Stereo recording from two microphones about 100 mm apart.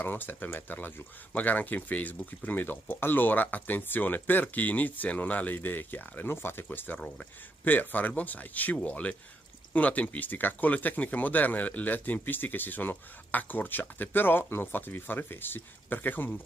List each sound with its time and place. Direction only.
0.0 s speech: 20° left (ahead or behind)